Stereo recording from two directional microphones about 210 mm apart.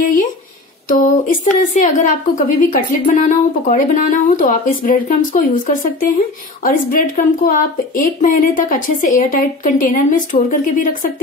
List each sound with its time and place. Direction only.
0.8 s speech: 40° left (ahead or behind)